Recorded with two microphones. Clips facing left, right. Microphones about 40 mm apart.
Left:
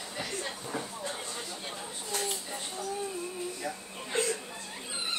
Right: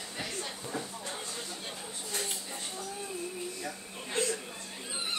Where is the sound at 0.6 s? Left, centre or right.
Centre.